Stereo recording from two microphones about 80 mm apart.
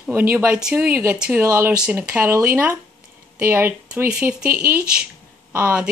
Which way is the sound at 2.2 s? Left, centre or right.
Right.